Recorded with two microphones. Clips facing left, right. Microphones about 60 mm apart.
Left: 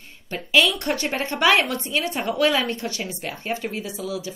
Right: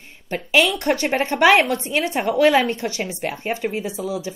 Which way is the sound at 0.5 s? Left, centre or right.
Right.